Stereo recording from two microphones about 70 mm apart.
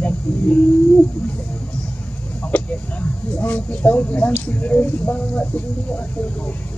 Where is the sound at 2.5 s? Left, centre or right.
Left.